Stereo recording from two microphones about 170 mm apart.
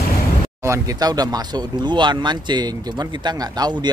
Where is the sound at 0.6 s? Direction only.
20° right (ahead or behind).